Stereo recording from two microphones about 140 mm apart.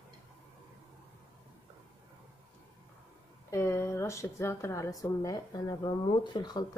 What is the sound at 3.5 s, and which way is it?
Speech, 20° left (ahead or behind).